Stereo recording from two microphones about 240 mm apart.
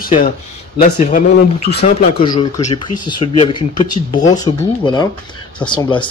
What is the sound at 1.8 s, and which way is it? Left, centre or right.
Speech, centre.